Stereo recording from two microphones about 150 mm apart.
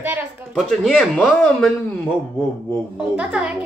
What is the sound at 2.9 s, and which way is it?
Speech, 5° right (ahead or behind).